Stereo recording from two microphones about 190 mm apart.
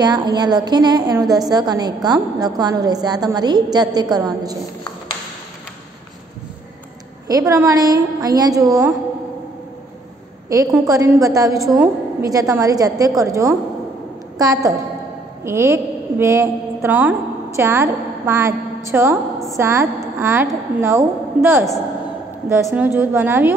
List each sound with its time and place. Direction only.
0.0 s a woman's voice: 20° right (ahead or behind)
7.2 s a woman's voice: 20° right (ahead or behind)
10.5 s a woman's voice: 15° right (ahead or behind)